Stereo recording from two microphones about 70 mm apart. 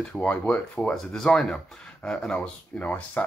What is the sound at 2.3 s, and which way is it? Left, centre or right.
Speech, left.